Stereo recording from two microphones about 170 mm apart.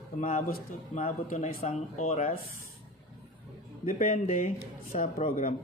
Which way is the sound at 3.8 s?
50° left (ahead or behind).